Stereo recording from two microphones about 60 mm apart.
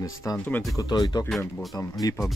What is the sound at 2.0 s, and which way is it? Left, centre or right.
Speech, left.